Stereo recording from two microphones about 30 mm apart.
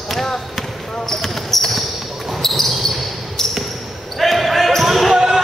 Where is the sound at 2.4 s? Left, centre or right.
Centre.